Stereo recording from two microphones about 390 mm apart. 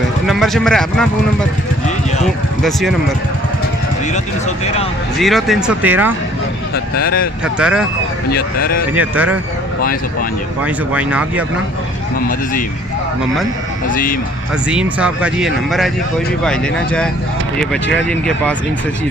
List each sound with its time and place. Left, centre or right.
0.3 s speech: centre
5.2 s speech: centre
7.0 s speech: left
7.4 s speech: centre
8.3 s speech: left
8.9 s speech: centre
10.6 s speech: centre
13.8 s speech: left
14.7 s speech: centre